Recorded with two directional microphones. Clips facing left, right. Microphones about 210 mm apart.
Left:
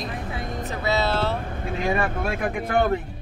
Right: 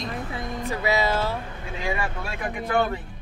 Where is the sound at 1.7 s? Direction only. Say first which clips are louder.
Left 5 dB; 55° left (ahead or behind).